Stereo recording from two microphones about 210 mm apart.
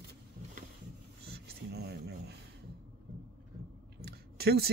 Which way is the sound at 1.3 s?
50° right (ahead or behind).